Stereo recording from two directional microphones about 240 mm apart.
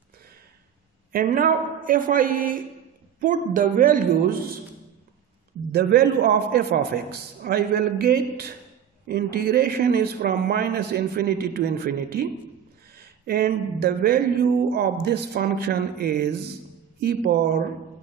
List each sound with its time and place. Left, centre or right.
1.1 s speech: right
5.7 s speech: right